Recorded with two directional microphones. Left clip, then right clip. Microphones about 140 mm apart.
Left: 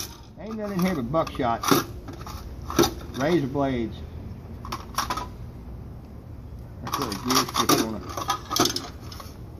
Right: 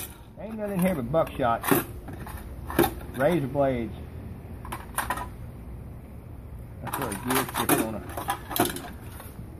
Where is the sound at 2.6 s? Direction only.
5° left (ahead or behind).